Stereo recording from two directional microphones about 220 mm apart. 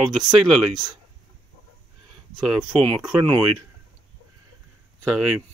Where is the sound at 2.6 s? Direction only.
20° right (ahead or behind).